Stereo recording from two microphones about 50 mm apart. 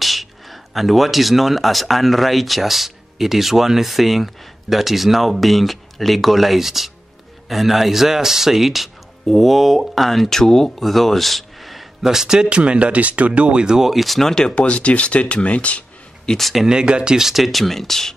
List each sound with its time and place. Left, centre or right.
0.0 s speech: centre; by 13.7 s right
13.7 s speech: centre
14.5 s speech: left
16.3 s speech: centre
16.6 s speech: centre